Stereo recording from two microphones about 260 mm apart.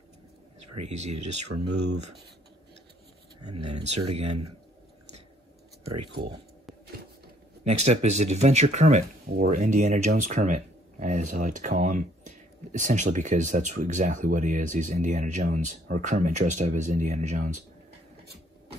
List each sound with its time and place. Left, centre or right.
0.6 s a sound: right
1.1 s speech: right
3.3 s a sound: right
4.1 s speech: right
6.2 s speech: centre
7.6 s speech: right
8.2 s speech: right